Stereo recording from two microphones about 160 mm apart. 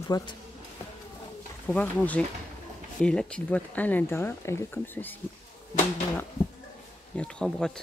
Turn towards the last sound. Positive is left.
turn(degrees=5)  # may be behind; listen again after turning